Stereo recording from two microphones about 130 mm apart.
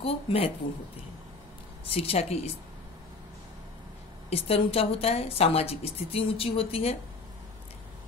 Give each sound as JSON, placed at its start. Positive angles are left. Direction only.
{"t": 0.0, "sound": "a woman's voice", "side_deg": 50}
{"t": 1.9, "sound": "a woman's voice", "side_deg": 50}
{"t": 4.3, "sound": "a woman's voice", "side_deg": 45}